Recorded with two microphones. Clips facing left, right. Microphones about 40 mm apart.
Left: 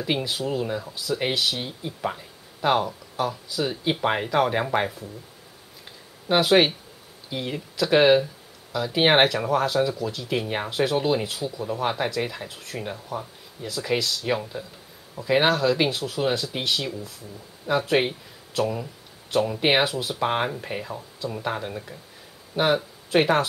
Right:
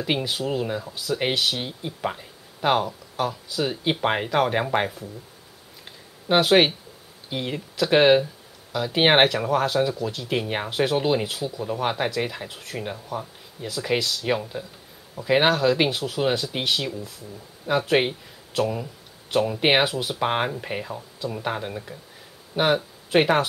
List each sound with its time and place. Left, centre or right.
0.0 s speech: centre
5.9 s a sound: centre
7.2 s speech: centre
22.5 s speech: right
23.1 s speech: centre